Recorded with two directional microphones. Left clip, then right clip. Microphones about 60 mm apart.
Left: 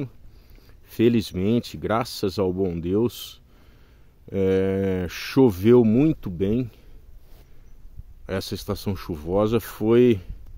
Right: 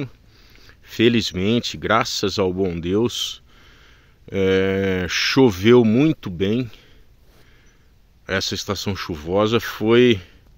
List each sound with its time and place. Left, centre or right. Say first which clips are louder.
0.0 s a sound: right 3 dB; left
1.3 s speech: right 3 dB; centre
8.3 s speech: right 6 dB; centre